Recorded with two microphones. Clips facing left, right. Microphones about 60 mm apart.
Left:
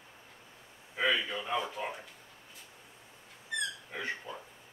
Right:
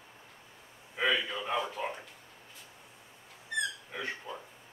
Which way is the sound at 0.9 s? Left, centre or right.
Centre.